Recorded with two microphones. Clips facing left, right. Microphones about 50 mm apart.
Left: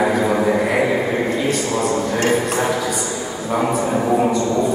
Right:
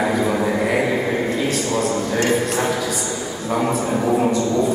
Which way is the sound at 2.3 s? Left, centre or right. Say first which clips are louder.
Left 1 dB; centre.